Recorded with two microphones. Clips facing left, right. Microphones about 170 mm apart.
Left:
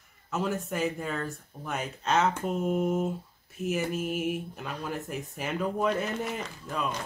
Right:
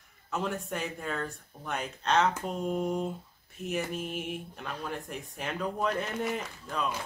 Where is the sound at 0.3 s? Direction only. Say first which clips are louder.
Left 2 dB; centre (ahead or behind).